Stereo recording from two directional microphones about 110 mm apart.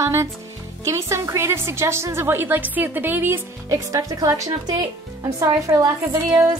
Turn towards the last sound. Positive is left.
turn(degrees=-25)  # may be behind; listen again after turning